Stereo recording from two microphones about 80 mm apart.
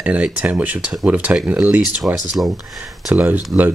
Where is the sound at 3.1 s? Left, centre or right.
Right.